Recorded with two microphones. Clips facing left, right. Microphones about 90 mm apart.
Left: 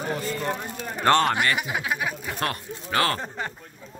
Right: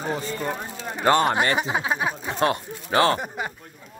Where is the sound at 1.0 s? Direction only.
10° right (ahead or behind).